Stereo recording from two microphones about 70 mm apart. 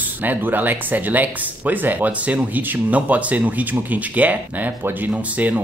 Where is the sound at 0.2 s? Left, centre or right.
Right.